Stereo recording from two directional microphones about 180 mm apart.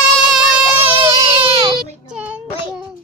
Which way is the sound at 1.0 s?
35° right (ahead or behind).